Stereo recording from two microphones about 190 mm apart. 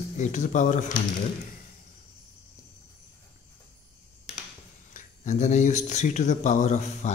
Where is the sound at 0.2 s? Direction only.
40° left (ahead or behind).